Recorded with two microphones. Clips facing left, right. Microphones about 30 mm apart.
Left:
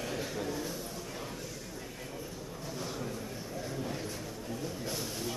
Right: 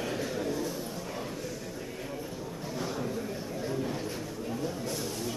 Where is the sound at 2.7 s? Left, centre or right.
Centre.